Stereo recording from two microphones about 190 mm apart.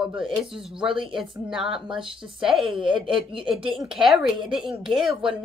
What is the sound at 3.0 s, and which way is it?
Speech, 25° right (ahead or behind).